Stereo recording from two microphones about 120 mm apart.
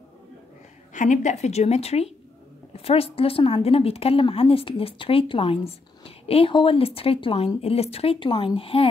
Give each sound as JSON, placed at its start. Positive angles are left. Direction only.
{"t": 0.9, "sound": "a woman's voice", "side_deg": 90}